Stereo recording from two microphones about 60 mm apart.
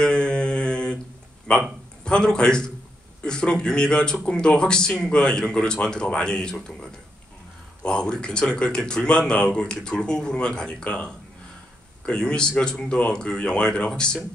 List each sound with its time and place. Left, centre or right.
0.0 s mantra: centre
1.5 s speech: centre
7.8 s speech: centre
12.1 s speech: centre